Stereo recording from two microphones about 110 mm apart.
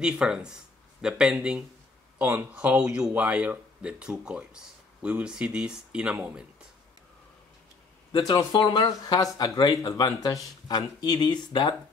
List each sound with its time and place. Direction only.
0.0 s speech: 5° right (ahead or behind)
2.2 s speech: 20° right (ahead or behind)
2.8 s speech: 10° right (ahead or behind)
8.2 s speech: 35° left (ahead or behind)